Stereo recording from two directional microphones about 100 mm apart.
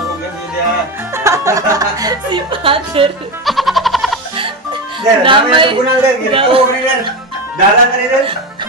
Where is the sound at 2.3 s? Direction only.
60° right (ahead or behind).